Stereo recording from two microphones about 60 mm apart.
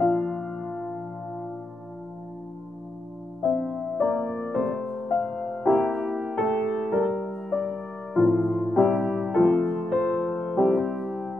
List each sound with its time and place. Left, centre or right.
0.0 s music: centre
4.0 s music: left
5.4 s music: centre
5.9 s music: centre
9.5 s music: centre